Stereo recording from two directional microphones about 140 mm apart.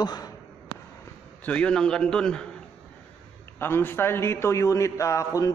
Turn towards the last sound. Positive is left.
turn(degrees=25)  # may be behind; listen again after turning